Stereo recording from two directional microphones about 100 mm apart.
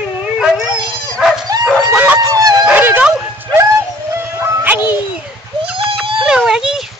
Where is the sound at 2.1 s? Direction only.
40° right (ahead or behind).